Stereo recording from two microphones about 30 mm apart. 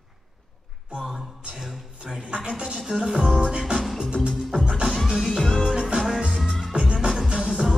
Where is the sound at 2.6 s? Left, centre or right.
Centre.